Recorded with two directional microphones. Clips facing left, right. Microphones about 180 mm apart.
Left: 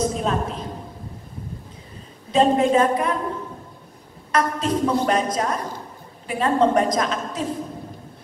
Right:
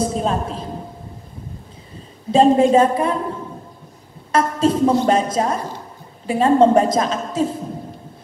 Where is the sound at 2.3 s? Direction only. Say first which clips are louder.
Right 4 dB; 30° right (ahead or behind).